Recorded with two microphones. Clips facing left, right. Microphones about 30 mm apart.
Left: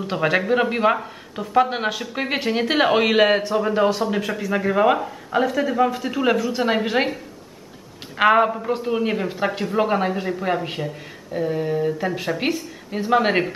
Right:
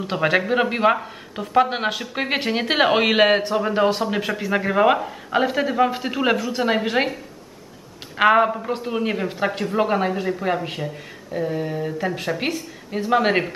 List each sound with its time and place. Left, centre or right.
0.0 s speech: centre
5.3 s speech: right
6.3 s a man's voice: centre
8.2 s a man's voice: centre